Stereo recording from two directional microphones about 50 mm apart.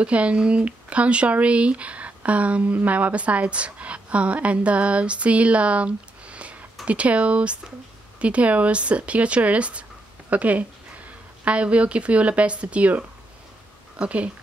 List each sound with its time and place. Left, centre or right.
0.0 s speech: right